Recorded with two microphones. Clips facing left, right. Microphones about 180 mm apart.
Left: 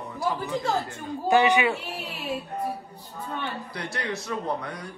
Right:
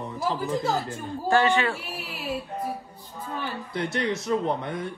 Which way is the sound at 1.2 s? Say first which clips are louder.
Left 1 dB; 15° left (ahead or behind).